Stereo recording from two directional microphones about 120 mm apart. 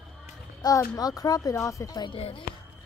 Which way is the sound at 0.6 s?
35° left (ahead or behind).